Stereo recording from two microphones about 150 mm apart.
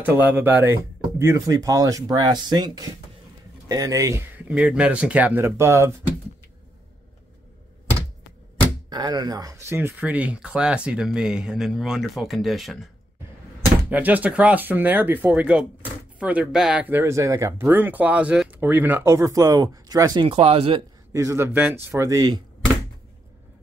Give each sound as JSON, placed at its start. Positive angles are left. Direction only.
{"t": 0.0, "sound": "speech", "side_deg": -10}
{"t": 3.6, "sound": "speech", "side_deg": -25}
{"t": 4.5, "sound": "speech", "side_deg": -10}
{"t": 8.9, "sound": "speech", "side_deg": -30}
{"t": 13.8, "sound": "speech", "side_deg": -10}
{"t": 20.2, "sound": "speech", "side_deg": -40}
{"t": 21.1, "sound": "speech", "side_deg": -20}